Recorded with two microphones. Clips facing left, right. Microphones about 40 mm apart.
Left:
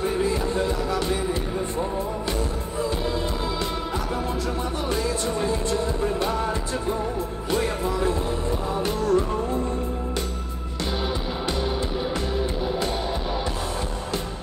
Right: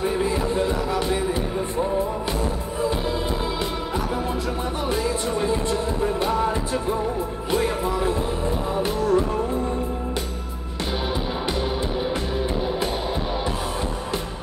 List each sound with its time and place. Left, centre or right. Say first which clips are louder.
0.0 s music: right 1 dB; centre
4.8 s music: right 2 dB; centre